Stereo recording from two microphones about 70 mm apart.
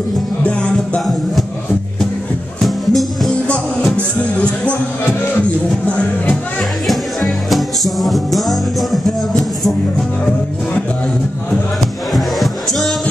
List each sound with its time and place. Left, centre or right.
0.4 s speech: centre
2.6 s music: centre
3.9 s speech: centre
6.9 s music: centre
12.4 s music: centre